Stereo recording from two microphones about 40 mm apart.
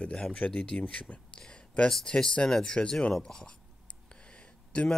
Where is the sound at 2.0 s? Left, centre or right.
Centre.